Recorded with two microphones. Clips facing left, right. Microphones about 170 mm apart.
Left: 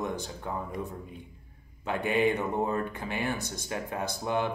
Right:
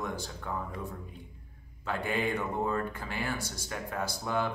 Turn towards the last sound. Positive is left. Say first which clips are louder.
# left 2 dB
turn(degrees=20)  # may be behind; listen again after turning